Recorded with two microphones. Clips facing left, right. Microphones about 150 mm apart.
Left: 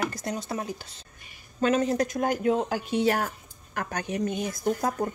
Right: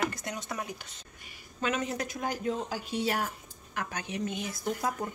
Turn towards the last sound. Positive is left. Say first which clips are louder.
# left 6 dB
turn(degrees=45)  # may be behind; listen again after turning